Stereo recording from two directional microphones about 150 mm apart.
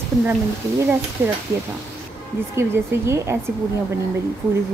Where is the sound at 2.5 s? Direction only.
20° right (ahead or behind).